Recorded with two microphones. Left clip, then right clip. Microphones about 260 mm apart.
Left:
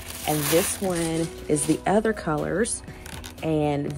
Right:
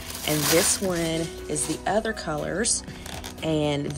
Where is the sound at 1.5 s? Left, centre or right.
Left.